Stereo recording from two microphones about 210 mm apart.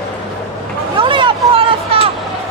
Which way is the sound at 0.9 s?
25° right (ahead or behind).